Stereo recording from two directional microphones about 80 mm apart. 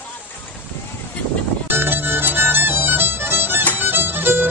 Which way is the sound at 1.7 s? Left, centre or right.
Right.